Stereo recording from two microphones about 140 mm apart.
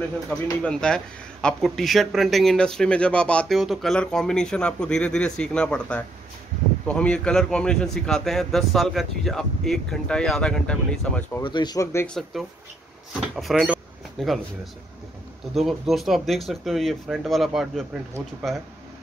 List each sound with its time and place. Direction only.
0.3 s speech: 5° left (ahead or behind)
11.4 s speech: 30° left (ahead or behind)
12.1 s speech: centre (ahead or behind)
15.6 s speech: centre (ahead or behind)